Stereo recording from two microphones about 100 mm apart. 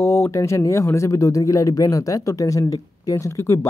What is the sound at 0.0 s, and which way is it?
Speech, 30° left (ahead or behind).